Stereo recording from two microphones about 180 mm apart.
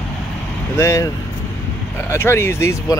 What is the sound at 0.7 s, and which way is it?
Speech, 15° left (ahead or behind).